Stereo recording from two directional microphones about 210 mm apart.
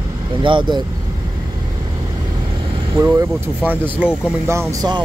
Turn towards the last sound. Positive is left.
turn(degrees=-15)  # may be behind; listen again after turning